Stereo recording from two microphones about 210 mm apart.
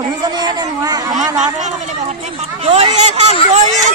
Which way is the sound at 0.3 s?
20° right (ahead or behind).